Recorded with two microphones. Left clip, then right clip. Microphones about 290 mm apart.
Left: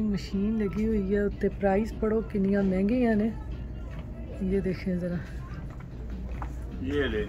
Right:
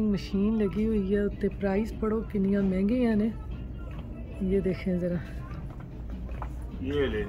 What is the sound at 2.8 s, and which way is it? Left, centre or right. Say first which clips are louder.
Speech: right 1 dB; right.